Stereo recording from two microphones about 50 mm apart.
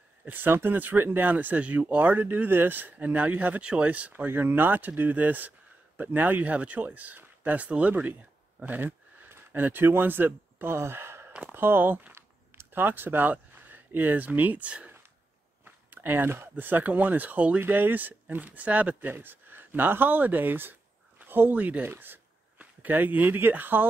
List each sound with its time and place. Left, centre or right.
0.2 s speech: right
2.1 s speech: right
4.3 s speech: right
8.5 s a sound: right
9.3 s speech: right
10.8 s sigh: right
11.5 s speech: right
12.1 s a sound: right
12.7 s speech: right
15.6 s speech: right
17.6 s speech: right
21.5 s speech: right
21.8 s speech: right